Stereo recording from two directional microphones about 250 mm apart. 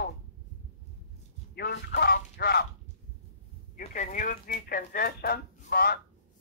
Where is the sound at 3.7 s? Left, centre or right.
Left.